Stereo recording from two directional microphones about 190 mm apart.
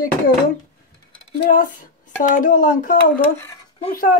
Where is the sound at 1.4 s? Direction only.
45° left (ahead or behind).